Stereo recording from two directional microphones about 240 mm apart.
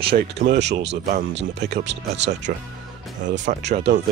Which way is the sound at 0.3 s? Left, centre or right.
Right.